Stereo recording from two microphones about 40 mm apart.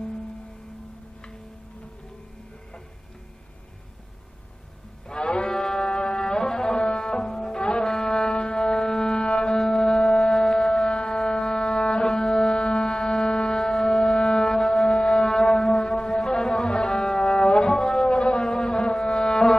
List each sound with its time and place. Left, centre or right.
5.0 s music: left
8.3 s a sound: left
9.1 s music: left
10.6 s music: centre
12.7 s a sound: left
14.4 s wind instrument: centre
14.8 s wind instrument: left
15.9 s music: centre